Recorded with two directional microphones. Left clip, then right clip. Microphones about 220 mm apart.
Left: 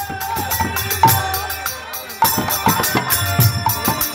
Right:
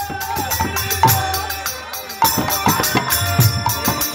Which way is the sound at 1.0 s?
15° right (ahead or behind).